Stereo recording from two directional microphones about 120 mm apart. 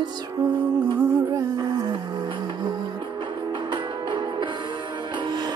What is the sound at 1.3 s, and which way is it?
Music, 35° right (ahead or behind).